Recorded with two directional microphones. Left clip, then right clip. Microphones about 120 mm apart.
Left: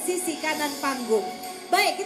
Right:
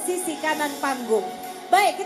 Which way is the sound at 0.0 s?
15° left (ahead or behind).